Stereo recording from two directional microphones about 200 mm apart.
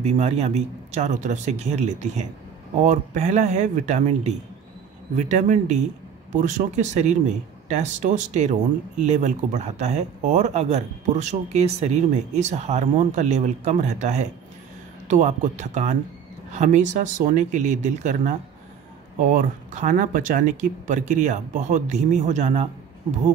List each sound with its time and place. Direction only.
0.0 s speech: 35° right (ahead or behind)